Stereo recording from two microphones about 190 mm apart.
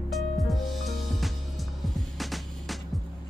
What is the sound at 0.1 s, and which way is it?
Music, centre (ahead or behind).